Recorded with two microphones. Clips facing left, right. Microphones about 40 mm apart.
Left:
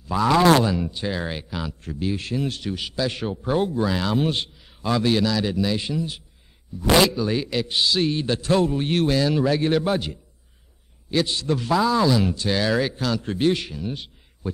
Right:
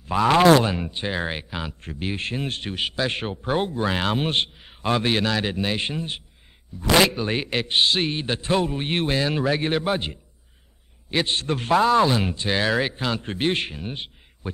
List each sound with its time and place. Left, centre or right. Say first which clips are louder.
0.0 s a man's voice: right 1 dB; right